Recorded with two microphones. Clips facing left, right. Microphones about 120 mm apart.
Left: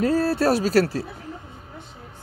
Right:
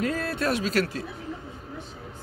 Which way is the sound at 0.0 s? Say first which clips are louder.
Left 7 dB; 35° left (ahead or behind).